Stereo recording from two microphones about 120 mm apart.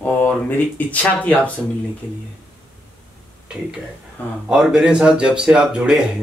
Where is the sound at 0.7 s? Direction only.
10° left (ahead or behind).